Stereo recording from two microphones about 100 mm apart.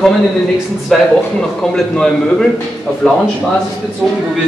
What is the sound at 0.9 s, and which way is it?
Speech, centre (ahead or behind).